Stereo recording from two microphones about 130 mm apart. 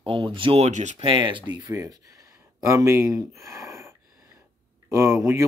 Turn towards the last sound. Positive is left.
turn(degrees=-20)  # may be behind; listen again after turning